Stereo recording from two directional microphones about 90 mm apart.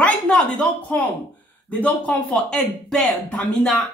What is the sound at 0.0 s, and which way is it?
Speech, 10° left (ahead or behind).